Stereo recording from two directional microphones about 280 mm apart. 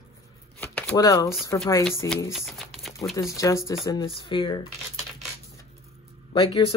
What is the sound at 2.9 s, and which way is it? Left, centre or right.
Speech, centre.